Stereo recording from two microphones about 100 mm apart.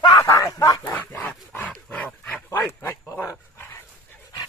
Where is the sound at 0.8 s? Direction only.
15° left (ahead or behind).